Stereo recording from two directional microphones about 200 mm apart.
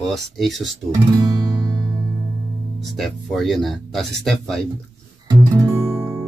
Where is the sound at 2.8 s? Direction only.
Centre (ahead or behind).